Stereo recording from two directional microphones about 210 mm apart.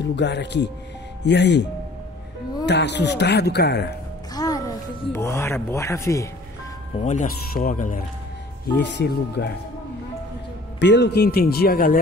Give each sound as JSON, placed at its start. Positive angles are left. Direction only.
{"t": 0.0, "sound": "speech", "side_deg": 55}
{"t": 4.3, "sound": "speech", "side_deg": 15}
{"t": 7.0, "sound": "speech", "side_deg": 35}
{"t": 8.8, "sound": "speech", "side_deg": 55}
{"t": 10.8, "sound": "speech", "side_deg": 55}